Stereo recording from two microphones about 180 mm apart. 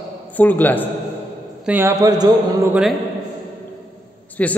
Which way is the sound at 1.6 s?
10° right (ahead or behind).